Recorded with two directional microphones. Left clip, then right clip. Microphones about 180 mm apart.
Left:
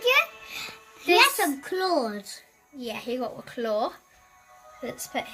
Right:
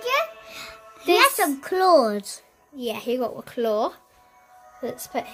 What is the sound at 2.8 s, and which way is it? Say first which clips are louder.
A woman's voice: right 5 dB; 40° right (ahead or behind).